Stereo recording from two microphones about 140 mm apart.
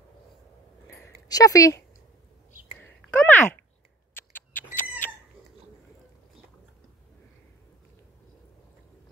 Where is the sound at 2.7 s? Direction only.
10° left (ahead or behind).